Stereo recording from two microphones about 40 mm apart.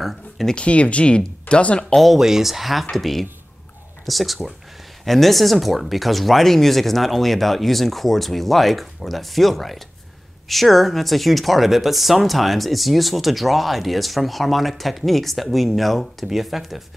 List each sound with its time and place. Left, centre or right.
0.0 s a sound: centre
0.6 s speech: left
2.1 s speech: centre